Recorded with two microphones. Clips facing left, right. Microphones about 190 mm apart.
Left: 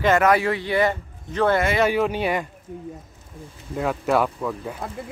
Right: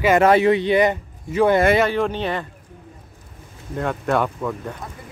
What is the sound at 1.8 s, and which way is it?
Speech, 5° left (ahead or behind).